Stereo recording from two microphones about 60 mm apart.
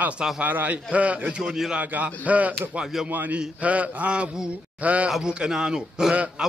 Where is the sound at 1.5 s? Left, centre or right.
Centre.